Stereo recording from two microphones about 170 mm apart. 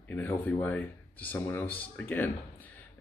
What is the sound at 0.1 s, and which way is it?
Speech, 10° left (ahead or behind).